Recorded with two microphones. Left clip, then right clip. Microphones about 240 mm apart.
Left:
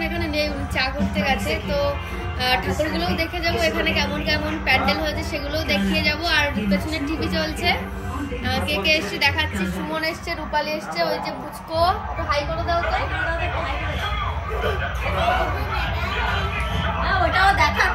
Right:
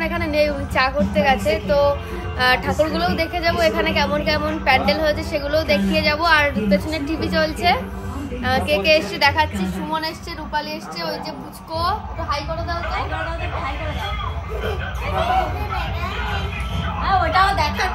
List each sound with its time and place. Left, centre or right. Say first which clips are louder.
0.0 s a woman's voice: right 5 dB; centre
17.0 s a woman's voice: right 2 dB; centre